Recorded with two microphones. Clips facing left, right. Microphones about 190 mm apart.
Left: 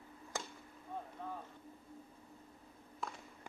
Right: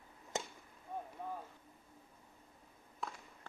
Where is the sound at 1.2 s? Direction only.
10° right (ahead or behind).